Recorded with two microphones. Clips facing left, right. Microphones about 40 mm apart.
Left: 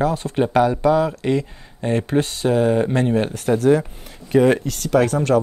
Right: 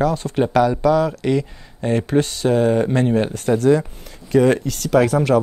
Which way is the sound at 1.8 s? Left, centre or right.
Centre.